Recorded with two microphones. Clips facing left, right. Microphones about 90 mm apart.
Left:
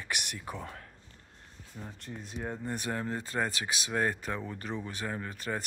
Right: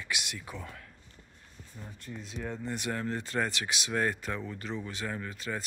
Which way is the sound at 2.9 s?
25° left (ahead or behind).